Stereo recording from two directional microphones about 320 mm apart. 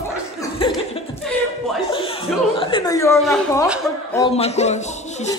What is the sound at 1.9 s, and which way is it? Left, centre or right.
Music, centre.